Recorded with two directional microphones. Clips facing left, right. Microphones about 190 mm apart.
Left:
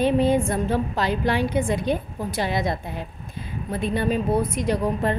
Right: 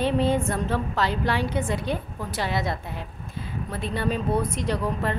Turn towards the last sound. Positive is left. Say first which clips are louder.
# left 4 dB
turn(degrees=15)  # may be behind; listen again after turning